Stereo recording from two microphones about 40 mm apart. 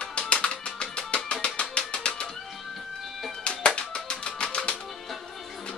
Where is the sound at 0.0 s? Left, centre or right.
Left.